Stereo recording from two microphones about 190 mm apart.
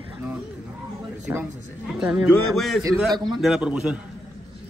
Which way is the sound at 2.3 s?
Centre (ahead or behind).